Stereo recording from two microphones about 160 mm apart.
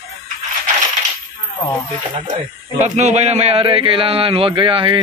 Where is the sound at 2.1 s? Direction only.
45° right (ahead or behind).